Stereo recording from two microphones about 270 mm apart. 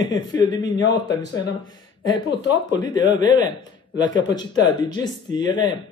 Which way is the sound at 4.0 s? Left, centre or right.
Centre.